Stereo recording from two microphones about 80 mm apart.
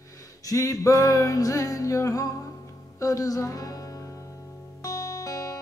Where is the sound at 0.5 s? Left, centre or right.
Left.